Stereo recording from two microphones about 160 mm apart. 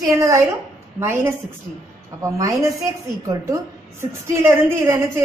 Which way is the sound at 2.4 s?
20° right (ahead or behind).